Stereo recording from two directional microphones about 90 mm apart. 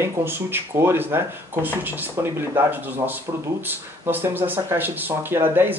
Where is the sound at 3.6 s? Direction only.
20° right (ahead or behind).